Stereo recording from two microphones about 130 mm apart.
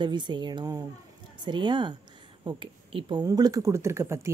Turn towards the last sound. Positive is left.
turn(degrees=-20)  # may be behind; listen again after turning